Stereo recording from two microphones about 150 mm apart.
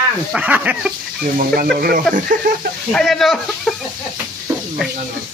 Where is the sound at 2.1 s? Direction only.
65° right (ahead or behind).